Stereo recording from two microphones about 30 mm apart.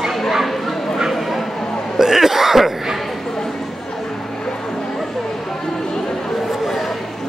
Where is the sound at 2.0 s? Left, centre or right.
Centre.